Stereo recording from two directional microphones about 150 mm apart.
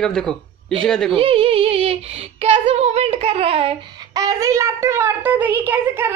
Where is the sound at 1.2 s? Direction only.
40° right (ahead or behind).